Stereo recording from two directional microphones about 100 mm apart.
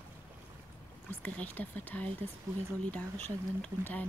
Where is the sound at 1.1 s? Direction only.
20° left (ahead or behind).